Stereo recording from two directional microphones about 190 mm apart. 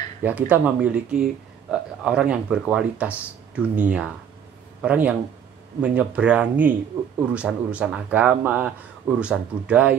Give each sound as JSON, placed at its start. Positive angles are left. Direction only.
{"t": 0.2, "sound": "speech", "side_deg": -10}